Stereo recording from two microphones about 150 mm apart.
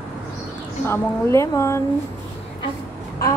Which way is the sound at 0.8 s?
15° left (ahead or behind).